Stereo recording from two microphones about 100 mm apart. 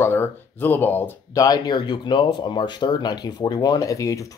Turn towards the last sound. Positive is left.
turn(degrees=35)  # may be behind; listen again after turning